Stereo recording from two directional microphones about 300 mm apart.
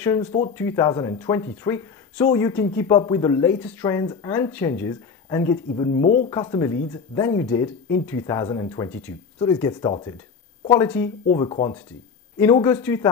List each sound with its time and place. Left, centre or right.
0.0 s speech: centre